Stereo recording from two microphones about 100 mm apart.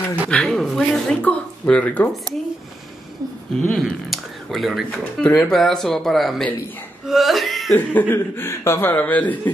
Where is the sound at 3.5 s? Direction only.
5° left (ahead or behind).